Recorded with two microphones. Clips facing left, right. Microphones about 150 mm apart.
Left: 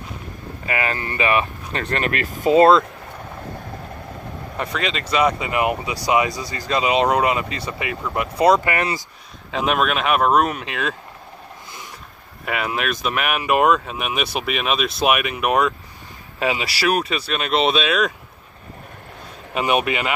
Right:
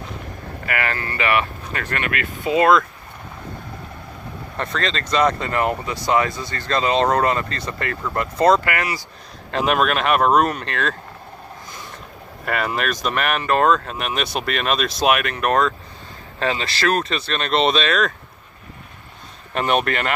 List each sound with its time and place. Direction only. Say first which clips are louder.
0.7 s speech: left 1 dB; 20° left (ahead or behind)
4.6 s speech: even; 10° left (ahead or behind); by 9.0 s 25° left (ahead or behind)
9.5 s speech: right 1 dB; centre (ahead or behind)
12.4 s speech: right 1 dB; 5° left (ahead or behind)
19.5 s speech: even; 10° left (ahead or behind)